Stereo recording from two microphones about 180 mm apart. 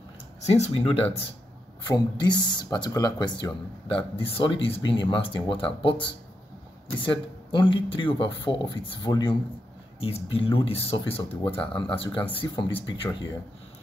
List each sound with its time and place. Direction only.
0.4 s speech: 35° left (ahead or behind)